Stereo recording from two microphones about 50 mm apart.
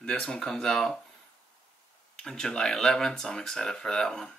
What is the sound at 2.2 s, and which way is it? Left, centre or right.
Speech, centre.